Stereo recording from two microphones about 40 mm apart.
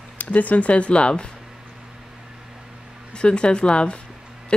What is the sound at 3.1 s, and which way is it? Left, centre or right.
Speech, left.